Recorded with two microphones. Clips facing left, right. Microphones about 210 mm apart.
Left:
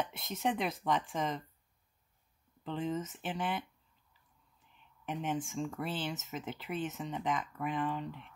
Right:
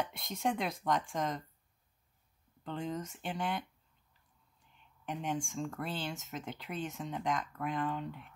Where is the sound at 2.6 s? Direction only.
Centre (ahead or behind).